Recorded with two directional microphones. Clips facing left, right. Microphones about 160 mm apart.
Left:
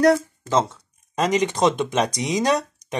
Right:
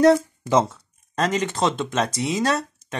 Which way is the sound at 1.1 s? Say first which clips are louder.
Left 2 dB; 15° left (ahead or behind).